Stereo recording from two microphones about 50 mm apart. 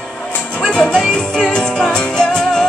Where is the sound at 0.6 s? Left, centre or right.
Centre.